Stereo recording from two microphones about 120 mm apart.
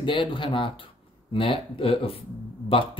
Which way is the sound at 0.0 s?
45° left (ahead or behind).